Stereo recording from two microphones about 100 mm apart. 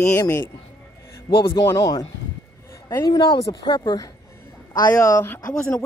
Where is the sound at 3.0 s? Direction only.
45° left (ahead or behind).